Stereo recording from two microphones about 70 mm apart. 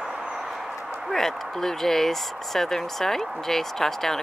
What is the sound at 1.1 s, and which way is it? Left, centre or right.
Speech, centre.